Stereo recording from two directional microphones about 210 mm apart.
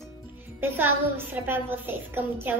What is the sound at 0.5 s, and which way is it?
A woman's voice, 10° right (ahead or behind).